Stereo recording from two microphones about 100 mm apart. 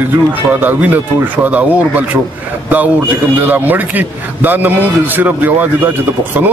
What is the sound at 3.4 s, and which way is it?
A man's voice, 20° right (ahead or behind).